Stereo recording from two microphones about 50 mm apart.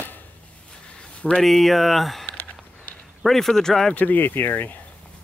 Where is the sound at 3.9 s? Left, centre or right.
Left.